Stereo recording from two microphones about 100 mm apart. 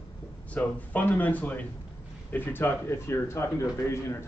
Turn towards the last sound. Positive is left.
turn(degrees=25)  # may be behind; listen again after turning